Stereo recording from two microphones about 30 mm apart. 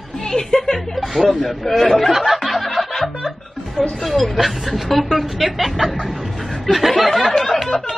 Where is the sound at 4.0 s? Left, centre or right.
Centre.